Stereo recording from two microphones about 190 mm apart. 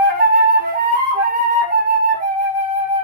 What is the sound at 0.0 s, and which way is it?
Flute, 45° right (ahead or behind).